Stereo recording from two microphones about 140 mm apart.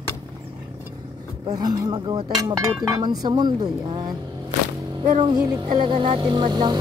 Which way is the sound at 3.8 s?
30° right (ahead or behind).